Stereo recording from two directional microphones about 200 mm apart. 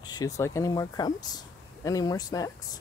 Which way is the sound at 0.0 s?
20° left (ahead or behind).